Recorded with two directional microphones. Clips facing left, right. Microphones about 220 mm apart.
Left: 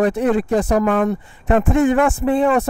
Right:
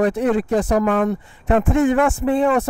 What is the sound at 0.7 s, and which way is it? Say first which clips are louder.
Speech: left 1 dB; 25° left (ahead or behind).